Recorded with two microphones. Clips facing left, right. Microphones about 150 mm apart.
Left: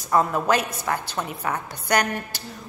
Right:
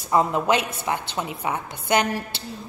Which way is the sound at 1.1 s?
15° right (ahead or behind).